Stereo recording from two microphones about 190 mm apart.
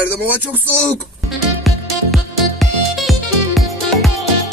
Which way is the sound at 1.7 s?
Centre (ahead or behind).